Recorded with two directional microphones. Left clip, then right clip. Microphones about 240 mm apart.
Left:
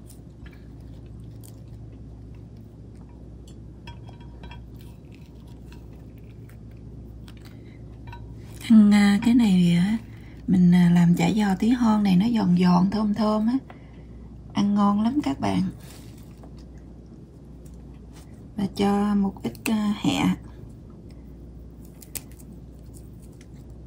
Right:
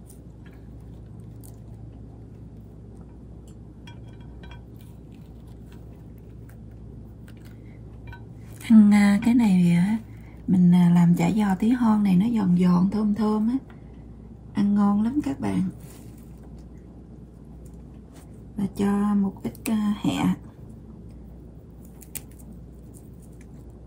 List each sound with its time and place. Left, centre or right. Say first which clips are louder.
8.6 s a woman's voice: even; centre; by 15.6 s left
18.6 s speech: left 3 dB; centre